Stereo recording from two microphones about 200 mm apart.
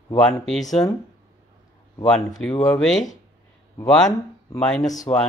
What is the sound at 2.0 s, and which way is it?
Speech, 5° left (ahead or behind).